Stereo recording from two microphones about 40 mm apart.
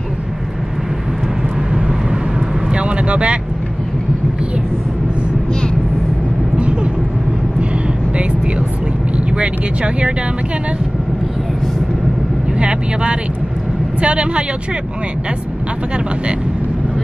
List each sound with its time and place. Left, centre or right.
2.7 s vehicle: right
6.5 s vehicle: right
9.4 s vehicle: right
12.5 s vehicle: right
14.0 s speech: right